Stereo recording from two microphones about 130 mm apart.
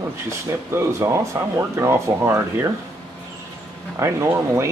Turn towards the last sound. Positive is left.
turn(degrees=-20)  # may be behind; listen again after turning